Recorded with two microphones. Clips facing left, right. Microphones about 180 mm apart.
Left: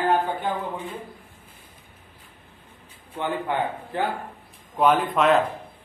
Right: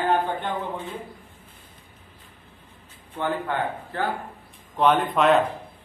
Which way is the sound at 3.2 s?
15° left (ahead or behind).